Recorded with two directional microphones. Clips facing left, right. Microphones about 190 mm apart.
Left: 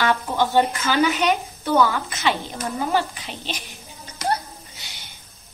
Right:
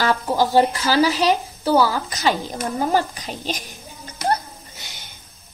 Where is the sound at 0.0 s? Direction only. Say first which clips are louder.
Right 2 dB; 35° right (ahead or behind).